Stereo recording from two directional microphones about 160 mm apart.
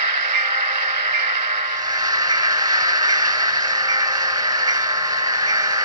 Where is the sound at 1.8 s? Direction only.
25° right (ahead or behind).